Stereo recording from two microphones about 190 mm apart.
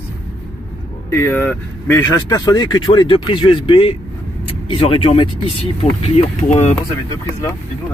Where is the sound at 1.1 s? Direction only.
15° left (ahead or behind); by 6.7 s 35° left (ahead or behind).